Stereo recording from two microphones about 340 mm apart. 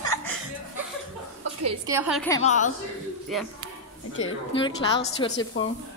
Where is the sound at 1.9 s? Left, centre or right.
Centre.